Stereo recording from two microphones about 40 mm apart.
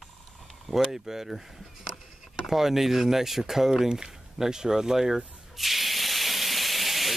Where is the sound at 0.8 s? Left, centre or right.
Centre.